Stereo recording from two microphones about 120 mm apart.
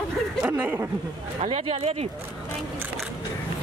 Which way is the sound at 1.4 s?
55° right (ahead or behind).